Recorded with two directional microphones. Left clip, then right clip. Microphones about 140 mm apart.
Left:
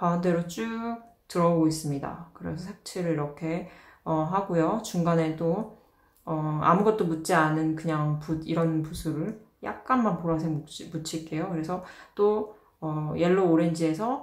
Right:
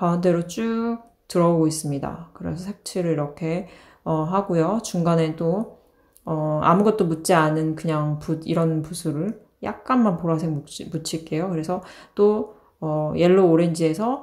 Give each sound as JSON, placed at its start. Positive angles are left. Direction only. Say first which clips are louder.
{"t": 0.0, "sound": "speech", "louder": "right 5 dB", "side_deg": -35}
{"t": 6.6, "sound": "speech", "louder": "right 3 dB", "side_deg": -35}